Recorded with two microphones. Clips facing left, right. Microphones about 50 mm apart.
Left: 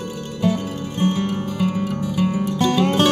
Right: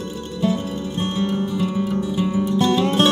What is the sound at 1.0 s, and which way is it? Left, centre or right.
Music, left.